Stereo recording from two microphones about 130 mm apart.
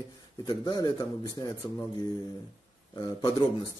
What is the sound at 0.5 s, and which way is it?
Speech, 35° left (ahead or behind).